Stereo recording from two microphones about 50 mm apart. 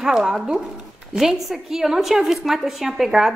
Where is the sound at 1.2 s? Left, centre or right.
Centre.